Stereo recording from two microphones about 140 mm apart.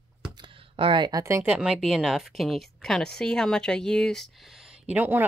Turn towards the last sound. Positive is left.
turn(degrees=-15)  # may be behind; listen again after turning